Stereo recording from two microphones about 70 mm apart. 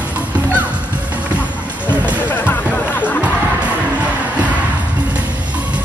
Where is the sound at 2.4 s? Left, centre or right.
Left.